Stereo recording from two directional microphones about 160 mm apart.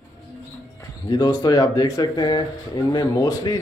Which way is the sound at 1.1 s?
25° left (ahead or behind).